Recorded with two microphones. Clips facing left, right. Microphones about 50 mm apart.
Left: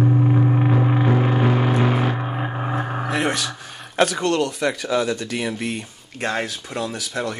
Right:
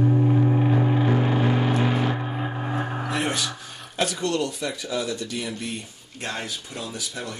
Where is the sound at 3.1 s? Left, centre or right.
Left.